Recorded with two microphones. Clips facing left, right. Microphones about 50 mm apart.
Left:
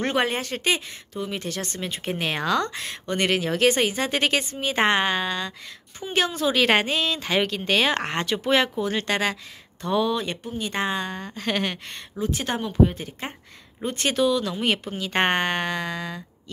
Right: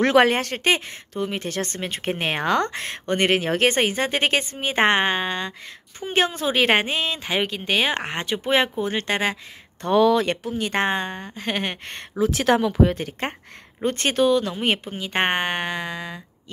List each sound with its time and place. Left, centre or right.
0.0 s speech: right
0.3 s a woman's voice: right
9.8 s speech: right
10.0 s speech: right
10.7 s speech: right
11.3 s a woman's voice: right
12.2 s speech: right
12.9 s speech: right
13.8 s a woman's voice: right; by 16.2 s centre